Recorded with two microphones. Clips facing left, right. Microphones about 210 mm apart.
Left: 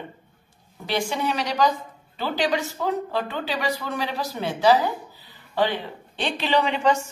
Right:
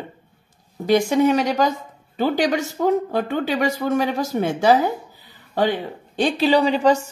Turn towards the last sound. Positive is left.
turn(degrees=-35)  # may be behind; listen again after turning